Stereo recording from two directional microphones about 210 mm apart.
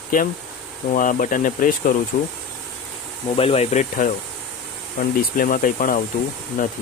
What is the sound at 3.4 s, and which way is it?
Speech, 30° left (ahead or behind).